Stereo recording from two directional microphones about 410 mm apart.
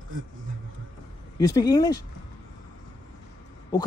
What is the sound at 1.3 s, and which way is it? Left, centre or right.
Speech, centre.